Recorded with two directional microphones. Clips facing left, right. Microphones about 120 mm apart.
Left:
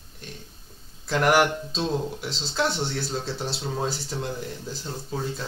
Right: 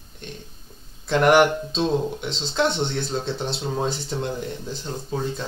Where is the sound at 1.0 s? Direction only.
Centre (ahead or behind).